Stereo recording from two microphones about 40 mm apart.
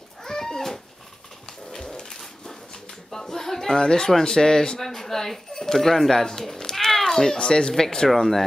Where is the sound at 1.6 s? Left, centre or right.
Centre.